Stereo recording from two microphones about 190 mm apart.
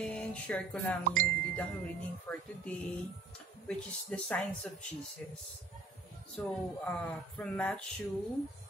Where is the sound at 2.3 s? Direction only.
10° left (ahead or behind).